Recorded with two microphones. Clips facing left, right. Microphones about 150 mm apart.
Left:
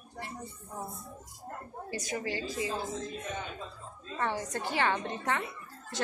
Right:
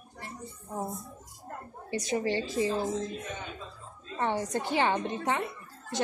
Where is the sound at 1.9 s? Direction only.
25° right (ahead or behind).